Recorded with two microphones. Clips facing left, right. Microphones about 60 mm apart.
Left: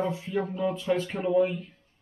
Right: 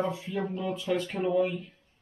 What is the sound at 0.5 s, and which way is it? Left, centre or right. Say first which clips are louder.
Speech: left 3 dB; centre.